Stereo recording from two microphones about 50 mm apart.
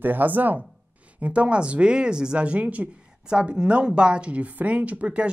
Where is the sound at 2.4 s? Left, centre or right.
Right.